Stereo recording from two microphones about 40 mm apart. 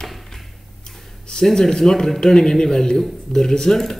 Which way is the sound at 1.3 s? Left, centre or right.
Centre.